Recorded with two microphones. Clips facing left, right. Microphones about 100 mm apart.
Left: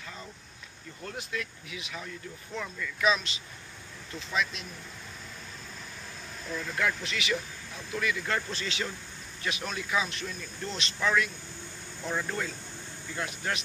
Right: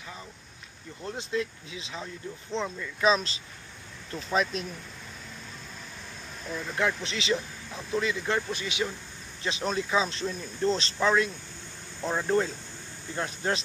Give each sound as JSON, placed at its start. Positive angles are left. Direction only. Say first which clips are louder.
{"t": 1.0, "sound": "speech", "louder": "right 6 dB", "side_deg": -25}
{"t": 6.7, "sound": "speech", "louder": "right 3 dB", "side_deg": -25}
{"t": 9.4, "sound": "speech", "louder": "right 5 dB", "side_deg": -30}